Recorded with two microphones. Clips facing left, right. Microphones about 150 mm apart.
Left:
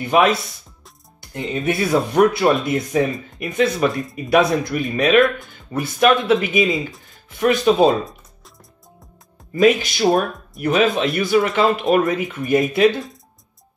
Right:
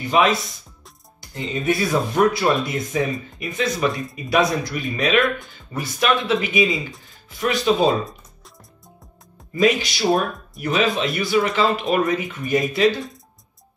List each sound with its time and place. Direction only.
0.0 s speech: 55° left (ahead or behind)
9.6 s speech: 50° left (ahead or behind)